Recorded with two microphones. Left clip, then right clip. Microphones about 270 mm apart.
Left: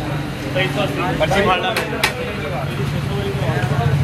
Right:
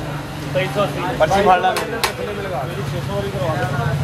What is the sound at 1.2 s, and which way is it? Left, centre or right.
Speech, right.